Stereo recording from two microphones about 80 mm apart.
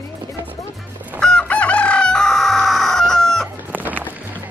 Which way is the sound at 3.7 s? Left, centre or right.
Right.